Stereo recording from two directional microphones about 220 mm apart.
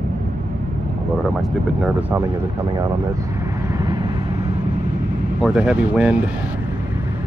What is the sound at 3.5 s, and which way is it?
Vehicle, 15° right (ahead or behind).